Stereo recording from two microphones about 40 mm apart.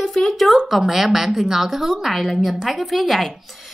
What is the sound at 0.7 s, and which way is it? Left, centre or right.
A woman's voice, centre.